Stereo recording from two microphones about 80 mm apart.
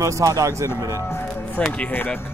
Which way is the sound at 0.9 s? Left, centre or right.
Left.